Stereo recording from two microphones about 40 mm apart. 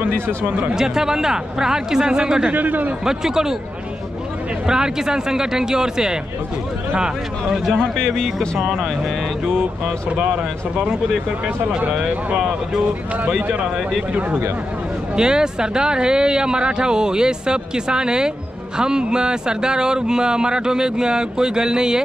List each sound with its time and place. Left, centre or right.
0.7 s speech: centre
2.5 s a man's voice: right
3.1 s speech: centre
4.6 s speech: centre
8.0 s speech: centre
9.8 s speech: right
15.1 s speech: centre